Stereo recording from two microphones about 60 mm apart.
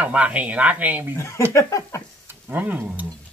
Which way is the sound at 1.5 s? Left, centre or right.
Left.